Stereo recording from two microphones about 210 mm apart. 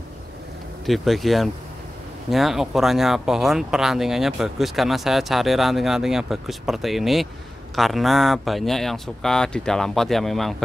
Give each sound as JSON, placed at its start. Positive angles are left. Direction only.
{"t": 0.8, "sound": "speech", "side_deg": 0}